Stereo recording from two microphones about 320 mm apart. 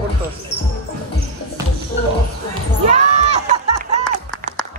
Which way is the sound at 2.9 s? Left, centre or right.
Right.